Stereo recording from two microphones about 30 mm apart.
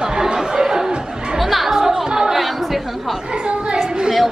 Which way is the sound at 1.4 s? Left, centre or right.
Centre.